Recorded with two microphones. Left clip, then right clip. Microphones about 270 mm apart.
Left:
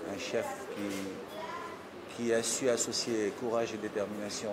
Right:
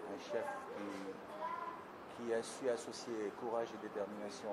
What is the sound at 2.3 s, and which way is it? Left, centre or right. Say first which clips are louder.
Speech: left 9 dB; centre.